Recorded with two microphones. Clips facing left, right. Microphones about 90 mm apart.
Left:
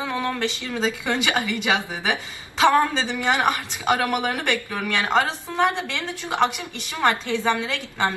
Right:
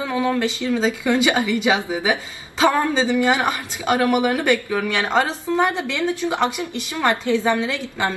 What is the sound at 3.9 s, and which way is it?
A woman's voice, 15° right (ahead or behind).